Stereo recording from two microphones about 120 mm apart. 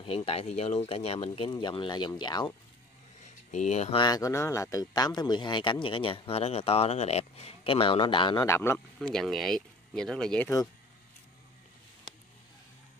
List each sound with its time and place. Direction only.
0.0 s speech: 50° left (ahead or behind)
3.5 s speech: 70° left (ahead or behind)
3.9 s speech: 35° left (ahead or behind)
8.4 s speech: 20° left (ahead or behind)
9.0 s speech: 5° left (ahead or behind)